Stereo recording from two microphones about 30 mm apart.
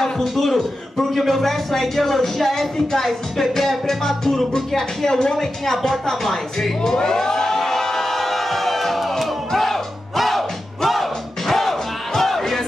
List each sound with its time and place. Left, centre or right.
0.4 s a man's voice: centre
5.0 s a man's voice: centre
6.8 s a sound: left; by 9.1 s centre
9.5 s music: centre